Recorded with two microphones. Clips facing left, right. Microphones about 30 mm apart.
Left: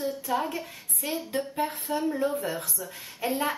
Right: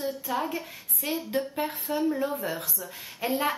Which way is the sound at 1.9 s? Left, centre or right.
Centre.